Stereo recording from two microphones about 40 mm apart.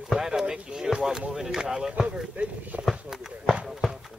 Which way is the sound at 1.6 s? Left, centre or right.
Right.